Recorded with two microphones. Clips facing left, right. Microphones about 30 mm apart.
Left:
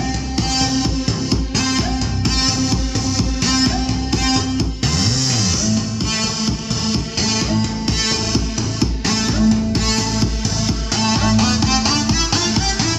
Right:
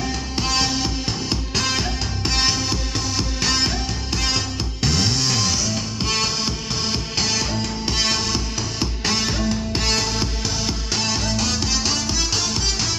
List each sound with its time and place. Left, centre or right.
0.4 s music: centre
4.9 s music: centre
7.3 s music: centre
8.7 s music: centre
11.1 s music: centre